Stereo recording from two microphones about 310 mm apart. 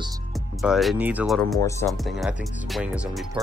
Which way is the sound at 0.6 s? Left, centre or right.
Centre.